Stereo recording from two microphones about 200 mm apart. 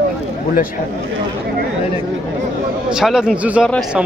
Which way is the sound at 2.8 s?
5° right (ahead or behind).